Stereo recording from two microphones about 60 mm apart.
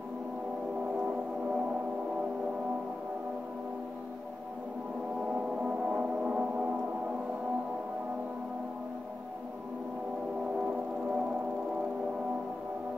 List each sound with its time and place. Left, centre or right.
1.0 s music: centre
5.3 s gong: centre
10.6 s music: centre